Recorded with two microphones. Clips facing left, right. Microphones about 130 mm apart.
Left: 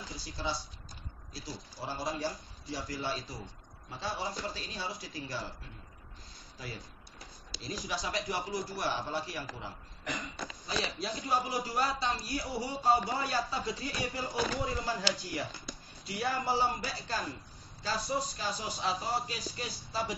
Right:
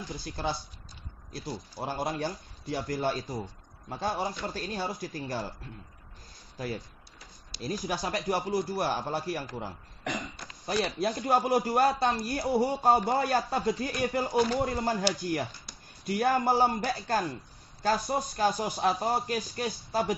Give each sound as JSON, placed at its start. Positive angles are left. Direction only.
{"t": 0.2, "sound": "a man's voice", "side_deg": -55}
{"t": 7.6, "sound": "a man's voice", "side_deg": -50}
{"t": 10.7, "sound": "a man's voice", "side_deg": -55}